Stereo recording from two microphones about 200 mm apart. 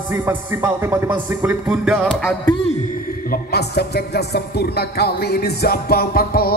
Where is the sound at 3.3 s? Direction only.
55° left (ahead or behind).